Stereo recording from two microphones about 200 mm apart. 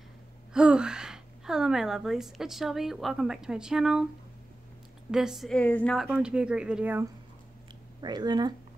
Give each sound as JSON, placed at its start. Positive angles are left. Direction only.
{"t": 0.5, "sound": "a woman's voice", "side_deg": -5}
{"t": 5.1, "sound": "speech", "side_deg": 0}
{"t": 6.0, "sound": "speech", "side_deg": -5}
{"t": 8.0, "sound": "speech", "side_deg": -20}